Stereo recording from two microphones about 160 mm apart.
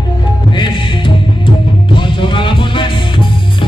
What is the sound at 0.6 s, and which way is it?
Music, 30° left (ahead or behind).